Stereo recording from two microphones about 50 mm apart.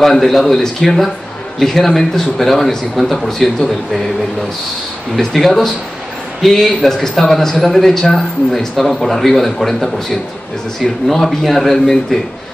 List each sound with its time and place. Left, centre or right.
0.0 s speech: centre
5.2 s speech: centre